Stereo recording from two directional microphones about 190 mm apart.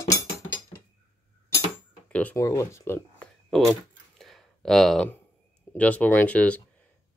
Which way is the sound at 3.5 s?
Centre (ahead or behind).